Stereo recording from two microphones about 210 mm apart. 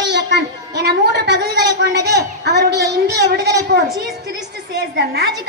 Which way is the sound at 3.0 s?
50° right (ahead or behind).